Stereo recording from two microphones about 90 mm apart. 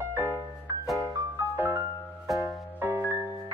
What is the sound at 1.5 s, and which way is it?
Music, 20° right (ahead or behind).